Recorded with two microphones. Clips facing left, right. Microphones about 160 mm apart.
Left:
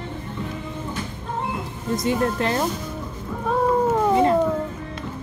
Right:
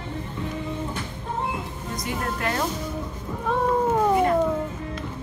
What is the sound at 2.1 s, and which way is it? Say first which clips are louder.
Speech: left 6 dB; 25° left (ahead or behind).